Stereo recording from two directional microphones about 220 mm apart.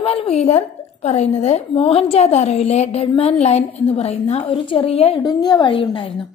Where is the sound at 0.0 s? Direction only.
25° left (ahead or behind).